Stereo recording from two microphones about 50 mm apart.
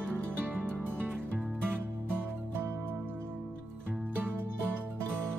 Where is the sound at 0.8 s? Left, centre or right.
Right.